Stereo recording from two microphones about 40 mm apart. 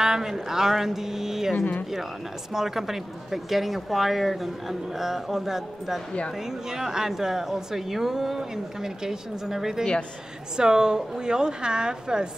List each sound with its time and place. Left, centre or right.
0.0 s a woman's voice: centre
2.5 s a woman's voice: centre